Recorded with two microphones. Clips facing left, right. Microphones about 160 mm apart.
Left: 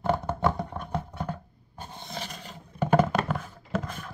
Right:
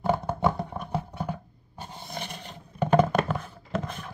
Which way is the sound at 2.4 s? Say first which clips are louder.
Right 1 dB; 5° left (ahead or behind).